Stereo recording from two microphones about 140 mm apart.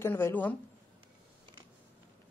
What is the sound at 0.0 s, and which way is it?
Speech, 15° left (ahead or behind).